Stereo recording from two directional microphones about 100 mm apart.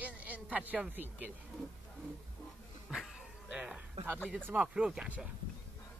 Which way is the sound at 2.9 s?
5° right (ahead or behind).